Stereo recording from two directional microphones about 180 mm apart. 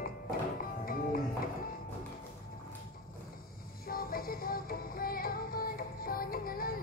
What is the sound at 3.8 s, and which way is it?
Music, 55° left (ahead or behind).